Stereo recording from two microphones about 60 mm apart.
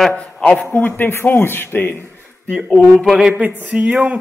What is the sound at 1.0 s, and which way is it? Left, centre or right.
Speech, left.